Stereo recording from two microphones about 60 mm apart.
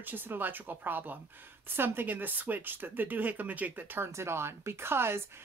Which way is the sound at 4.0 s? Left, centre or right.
Right.